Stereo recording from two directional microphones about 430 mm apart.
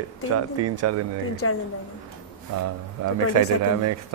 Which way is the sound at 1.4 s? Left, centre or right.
Left.